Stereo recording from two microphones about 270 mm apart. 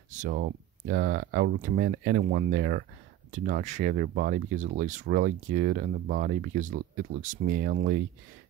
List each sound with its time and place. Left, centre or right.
0.2 s speech: right